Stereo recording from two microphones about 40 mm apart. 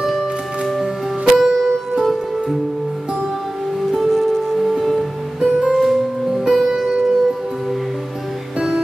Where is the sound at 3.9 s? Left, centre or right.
Centre.